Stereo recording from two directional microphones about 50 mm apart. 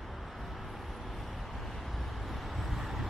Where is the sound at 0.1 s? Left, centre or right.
Centre.